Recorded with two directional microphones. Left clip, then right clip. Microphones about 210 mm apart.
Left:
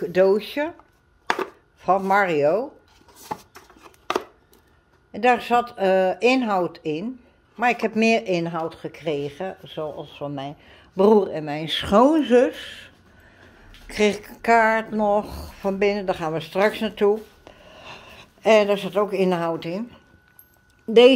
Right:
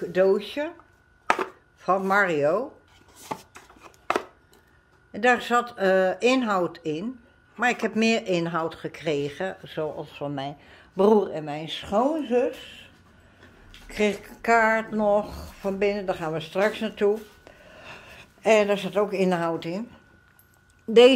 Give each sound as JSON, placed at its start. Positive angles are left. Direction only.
{"t": 0.0, "sound": "speech", "side_deg": 20}
{"t": 1.3, "sound": "chopping", "side_deg": 5}
{"t": 5.1, "sound": "speech", "side_deg": 5}
{"t": 13.8, "sound": "a woman's voice", "side_deg": 10}